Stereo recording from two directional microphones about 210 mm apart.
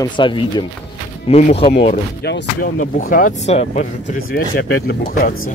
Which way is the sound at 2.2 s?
45° left (ahead or behind).